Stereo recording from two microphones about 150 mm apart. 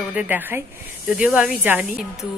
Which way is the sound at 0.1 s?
10° right (ahead or behind).